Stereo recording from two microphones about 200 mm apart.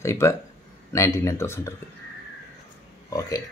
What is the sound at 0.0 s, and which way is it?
A man's voice, 15° left (ahead or behind).